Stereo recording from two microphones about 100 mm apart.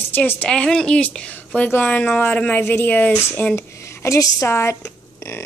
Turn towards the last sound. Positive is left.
turn(degrees=25)  # may be behind; listen again after turning